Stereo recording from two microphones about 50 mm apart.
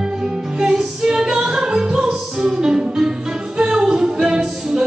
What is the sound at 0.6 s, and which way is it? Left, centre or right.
Music, centre.